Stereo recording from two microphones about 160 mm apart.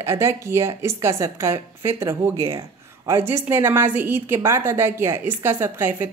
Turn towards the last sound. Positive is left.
turn(degrees=-15)  # may be behind; listen again after turning